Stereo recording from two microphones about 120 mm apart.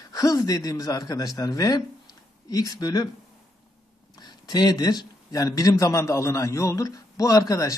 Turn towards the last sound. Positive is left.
turn(degrees=30)  # may be behind; listen again after turning